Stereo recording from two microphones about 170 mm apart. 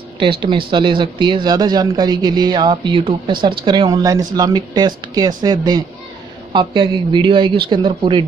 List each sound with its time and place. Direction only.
0.2 s speech: 30° right (ahead or behind)